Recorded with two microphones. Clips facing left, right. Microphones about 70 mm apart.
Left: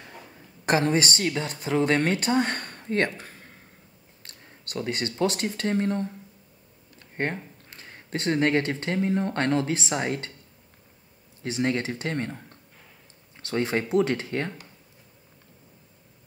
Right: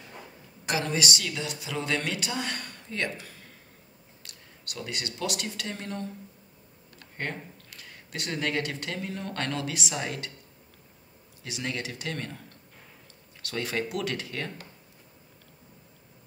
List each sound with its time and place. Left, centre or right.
0.7 s speech: left
7.2 s speech: left
11.4 s speech: left